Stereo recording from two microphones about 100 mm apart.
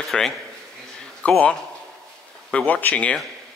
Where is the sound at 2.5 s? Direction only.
10° left (ahead or behind).